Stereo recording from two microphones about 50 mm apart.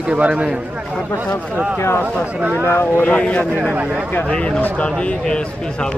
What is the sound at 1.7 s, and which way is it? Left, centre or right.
Speech, left.